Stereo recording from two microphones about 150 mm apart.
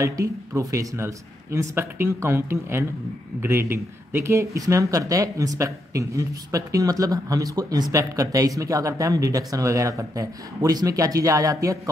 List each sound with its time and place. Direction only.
0.0 s speech: 20° right (ahead or behind)